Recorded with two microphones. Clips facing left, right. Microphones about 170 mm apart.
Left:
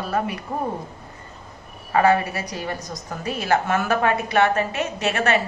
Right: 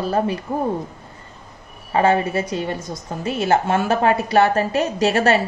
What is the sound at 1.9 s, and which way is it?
A woman's voice, 25° right (ahead or behind).